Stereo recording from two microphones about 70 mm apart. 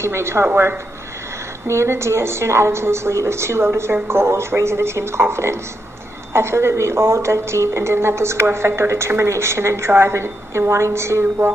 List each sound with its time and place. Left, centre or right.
0.0 s speech: right